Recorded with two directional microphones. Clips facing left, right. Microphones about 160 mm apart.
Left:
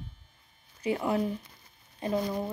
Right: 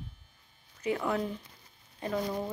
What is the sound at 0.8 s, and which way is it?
Speech, 25° left (ahead or behind).